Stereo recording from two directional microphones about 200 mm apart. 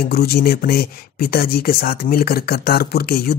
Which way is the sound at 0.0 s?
50° left (ahead or behind).